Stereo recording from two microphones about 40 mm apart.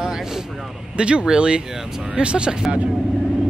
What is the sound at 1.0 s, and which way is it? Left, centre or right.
Speech, right.